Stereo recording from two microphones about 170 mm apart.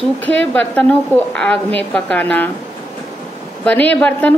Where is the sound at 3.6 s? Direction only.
10° left (ahead or behind).